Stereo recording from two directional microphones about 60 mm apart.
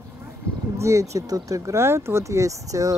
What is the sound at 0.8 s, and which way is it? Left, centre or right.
Speech, right.